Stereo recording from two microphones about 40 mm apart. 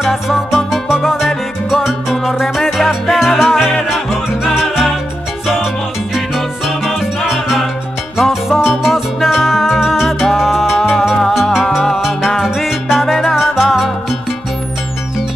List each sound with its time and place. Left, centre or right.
0.0 s music: centre
0.7 s music: centre
6.1 s music: centre
8.2 s salsa music: centre
8.8 s music: centre
13.0 s salsa music: centre
13.4 s music: centre